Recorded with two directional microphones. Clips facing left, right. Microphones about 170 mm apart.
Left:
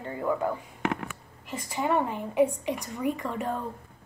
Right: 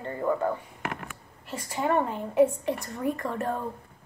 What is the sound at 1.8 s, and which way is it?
Speech, 5° left (ahead or behind).